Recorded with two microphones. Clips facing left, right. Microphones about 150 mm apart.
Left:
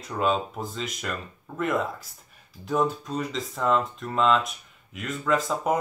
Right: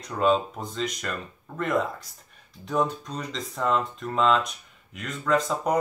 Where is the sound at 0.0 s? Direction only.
Centre (ahead or behind).